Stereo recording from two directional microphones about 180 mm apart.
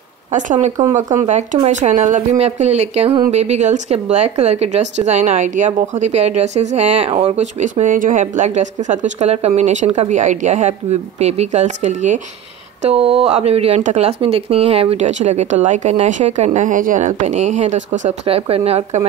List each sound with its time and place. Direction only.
0.3 s a woman's voice: 45° right (ahead or behind)